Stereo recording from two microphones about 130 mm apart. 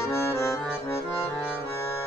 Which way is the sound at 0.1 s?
20° left (ahead or behind).